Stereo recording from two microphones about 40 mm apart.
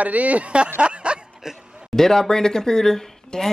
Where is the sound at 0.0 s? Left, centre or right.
Right.